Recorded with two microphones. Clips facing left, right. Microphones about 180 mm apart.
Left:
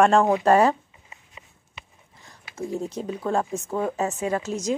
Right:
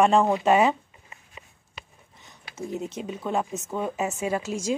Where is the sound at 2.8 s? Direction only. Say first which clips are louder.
Left 3 dB; 20° right (ahead or behind).